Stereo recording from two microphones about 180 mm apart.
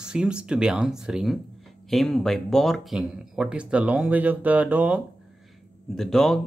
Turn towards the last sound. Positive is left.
turn(degrees=0)  # may be behind; listen again after turning